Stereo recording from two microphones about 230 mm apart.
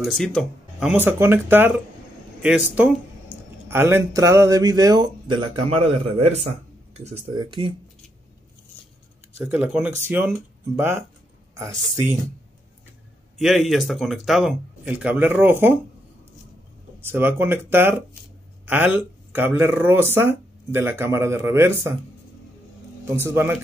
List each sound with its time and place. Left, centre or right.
0.0 s speech: centre; by 7.7 s right
9.5 s speech: centre
11.5 s speech: centre
13.4 s speech: centre
17.0 s speech: centre
23.0 s speech: centre